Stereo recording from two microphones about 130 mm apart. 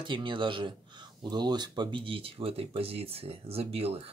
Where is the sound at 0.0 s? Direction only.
40° right (ahead or behind).